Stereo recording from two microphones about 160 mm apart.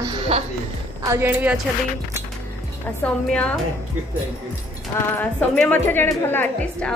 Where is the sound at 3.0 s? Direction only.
10° left (ahead or behind).